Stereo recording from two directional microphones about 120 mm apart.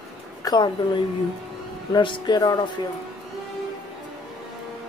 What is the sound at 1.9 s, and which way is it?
Speech, 45° left (ahead or behind).